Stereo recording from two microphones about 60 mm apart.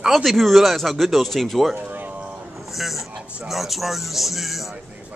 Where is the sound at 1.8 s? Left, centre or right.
Right.